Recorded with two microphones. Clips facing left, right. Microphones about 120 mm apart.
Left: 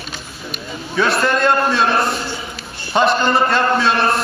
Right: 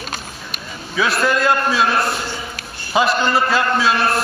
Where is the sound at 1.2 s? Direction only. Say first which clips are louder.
Right 1 dB; 5° right (ahead or behind).